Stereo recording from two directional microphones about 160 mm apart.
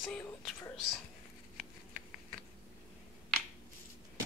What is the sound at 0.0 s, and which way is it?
Speech, 5° left (ahead or behind).